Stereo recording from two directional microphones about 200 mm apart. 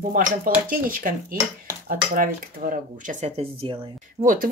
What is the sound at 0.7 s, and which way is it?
Speech, 45° right (ahead or behind).